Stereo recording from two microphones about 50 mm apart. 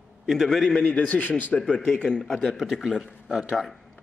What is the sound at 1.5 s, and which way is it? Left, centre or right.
Speech, centre.